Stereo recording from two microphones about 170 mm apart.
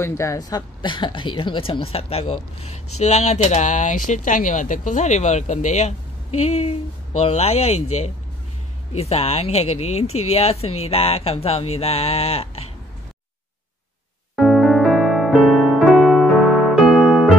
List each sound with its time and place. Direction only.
0.0 s speech: 15° left (ahead or behind); by 12.7 s 35° left (ahead or behind)
14.3 s electric piano: centre (ahead or behind)